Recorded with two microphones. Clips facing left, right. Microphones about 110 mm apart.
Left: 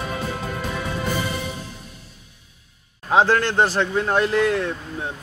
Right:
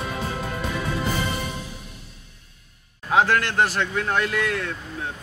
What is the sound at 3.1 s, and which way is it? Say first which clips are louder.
Speech: left 2 dB; 30° left (ahead or behind).